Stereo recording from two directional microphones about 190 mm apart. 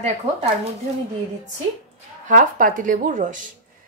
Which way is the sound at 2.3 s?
45° right (ahead or behind).